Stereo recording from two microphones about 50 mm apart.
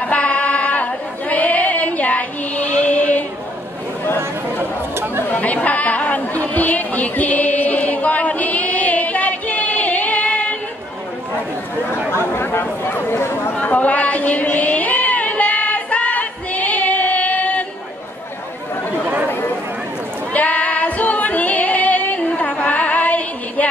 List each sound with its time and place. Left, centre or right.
0.0 s singing: left
5.2 s chatter: left
6.5 s a sound: left
12.2 s chatter: left
13.6 s a sound: left
19.0 s chatter: right
20.3 s female singing: left